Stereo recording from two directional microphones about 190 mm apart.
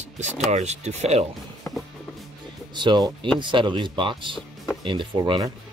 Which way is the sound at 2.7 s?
25° right (ahead or behind).